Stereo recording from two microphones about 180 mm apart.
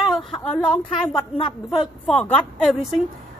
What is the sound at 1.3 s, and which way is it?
Speech, 25° left (ahead or behind).